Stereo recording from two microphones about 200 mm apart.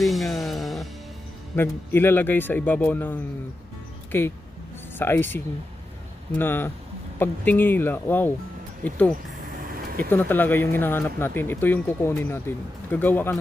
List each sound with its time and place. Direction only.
0.0 s music: centre (ahead or behind)
1.5 s speech: 10° left (ahead or behind)
6.3 s speech: 10° left (ahead or behind)
9.7 s vehicle: 45° right (ahead or behind)
10.0 s speech: 10° left (ahead or behind)